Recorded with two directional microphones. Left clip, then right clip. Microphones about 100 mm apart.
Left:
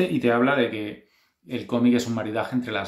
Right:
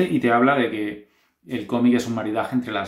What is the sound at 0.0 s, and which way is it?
Speech, 20° left (ahead or behind).